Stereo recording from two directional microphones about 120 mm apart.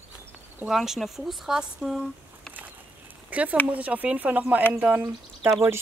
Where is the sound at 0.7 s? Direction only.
Centre (ahead or behind).